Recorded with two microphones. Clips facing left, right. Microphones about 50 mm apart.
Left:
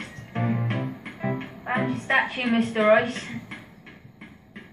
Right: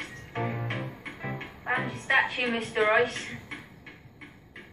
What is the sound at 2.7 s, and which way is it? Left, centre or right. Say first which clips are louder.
Speech: left 4 dB; centre.